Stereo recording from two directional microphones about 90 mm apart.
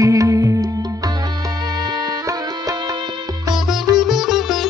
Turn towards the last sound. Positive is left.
turn(degrees=0)  # may be behind; listen again after turning